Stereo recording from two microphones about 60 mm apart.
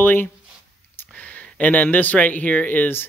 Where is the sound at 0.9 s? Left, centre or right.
Left.